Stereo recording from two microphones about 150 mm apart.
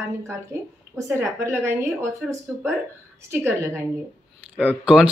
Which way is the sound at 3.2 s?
15° right (ahead or behind).